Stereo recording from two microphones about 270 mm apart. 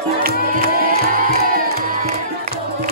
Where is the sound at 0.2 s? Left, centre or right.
Right.